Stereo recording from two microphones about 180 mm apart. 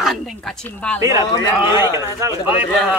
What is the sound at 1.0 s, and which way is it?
A man's voice, 15° right (ahead or behind).